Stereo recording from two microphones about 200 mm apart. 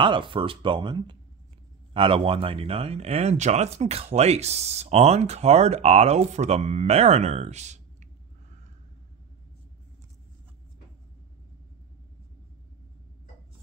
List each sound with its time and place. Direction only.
0.0 s speech: 25° right (ahead or behind)